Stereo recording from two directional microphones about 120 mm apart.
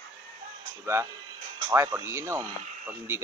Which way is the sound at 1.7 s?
20° right (ahead or behind).